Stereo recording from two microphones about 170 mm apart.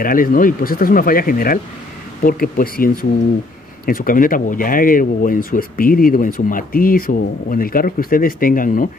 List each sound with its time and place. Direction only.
0.0 s speech: 55° left (ahead or behind)